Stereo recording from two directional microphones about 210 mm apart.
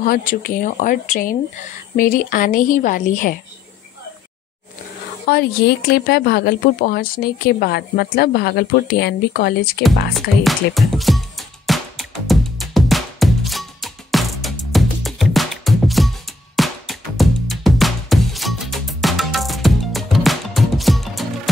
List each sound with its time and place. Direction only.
0.0 s a woman's voice: 40° left (ahead or behind)
5.3 s speech: 50° left (ahead or behind)
10.1 s music: centre (ahead or behind)